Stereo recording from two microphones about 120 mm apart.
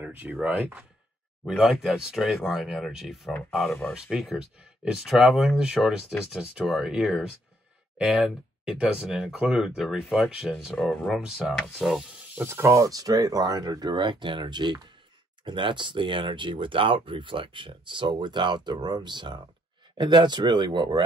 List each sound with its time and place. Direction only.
0.0 s speech: 15° right (ahead or behind)
12.4 s speech: 20° right (ahead or behind); by 21.0 s 40° right (ahead or behind)